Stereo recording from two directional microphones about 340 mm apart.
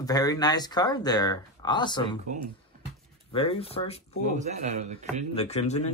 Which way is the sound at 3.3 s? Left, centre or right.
Centre.